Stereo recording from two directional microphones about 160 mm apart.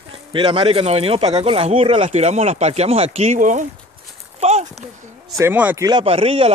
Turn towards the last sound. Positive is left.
turn(degrees=-35)  # may be behind; listen again after turning